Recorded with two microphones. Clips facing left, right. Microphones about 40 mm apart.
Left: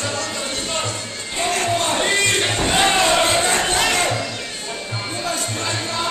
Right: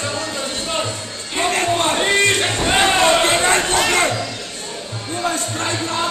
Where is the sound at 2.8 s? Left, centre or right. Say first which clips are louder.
Right 2 dB; centre.